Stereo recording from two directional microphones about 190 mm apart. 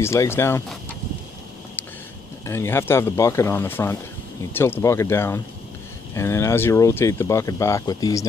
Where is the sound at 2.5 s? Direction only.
15° left (ahead or behind).